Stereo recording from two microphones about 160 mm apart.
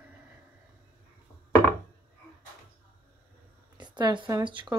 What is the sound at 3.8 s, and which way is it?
Speech, 30° right (ahead or behind).